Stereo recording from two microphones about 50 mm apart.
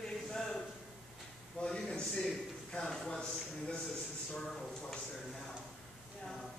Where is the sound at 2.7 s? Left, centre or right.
Centre.